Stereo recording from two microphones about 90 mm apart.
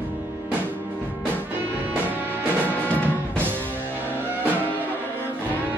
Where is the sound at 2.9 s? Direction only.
20° left (ahead or behind).